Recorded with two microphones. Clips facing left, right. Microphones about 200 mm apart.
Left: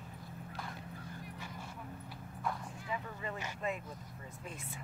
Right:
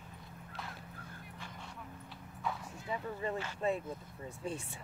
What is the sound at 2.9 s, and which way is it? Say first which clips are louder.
Speech: right 4 dB; 35° right (ahead or behind).